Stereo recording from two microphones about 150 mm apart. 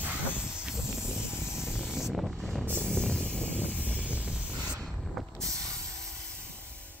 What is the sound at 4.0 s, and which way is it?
Spray, 5° right (ahead or behind).